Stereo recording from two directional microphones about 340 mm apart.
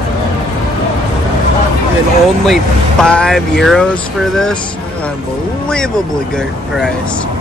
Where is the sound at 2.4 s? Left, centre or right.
Centre.